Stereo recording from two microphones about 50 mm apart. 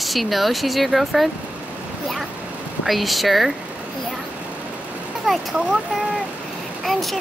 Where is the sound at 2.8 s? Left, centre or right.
Centre.